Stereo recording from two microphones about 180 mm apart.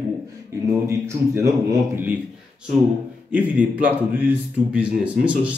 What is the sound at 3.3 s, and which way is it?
A man's voice, 10° right (ahead or behind).